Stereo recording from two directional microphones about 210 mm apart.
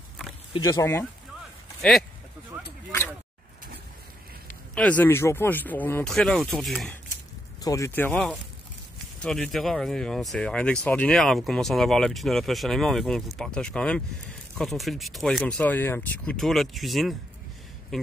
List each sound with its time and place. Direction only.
0.7 s speech: 15° left (ahead or behind)
1.8 s speech: centre (ahead or behind)
2.5 s a sound: 10° right (ahead or behind)
4.7 s speech: 5° left (ahead or behind)
7.6 s speech: 15° left (ahead or behind)